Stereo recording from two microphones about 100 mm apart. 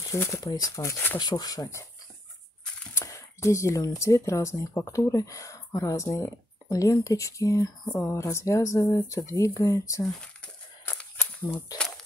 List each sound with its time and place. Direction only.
0.0 s speech: 30° left (ahead or behind)
1.1 s speech: 45° left (ahead or behind)
2.9 s speech: 30° left (ahead or behind)
11.0 s a sound: 20° left (ahead or behind)